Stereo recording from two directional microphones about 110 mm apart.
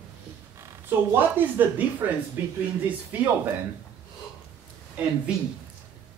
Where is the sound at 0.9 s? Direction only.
20° right (ahead or behind).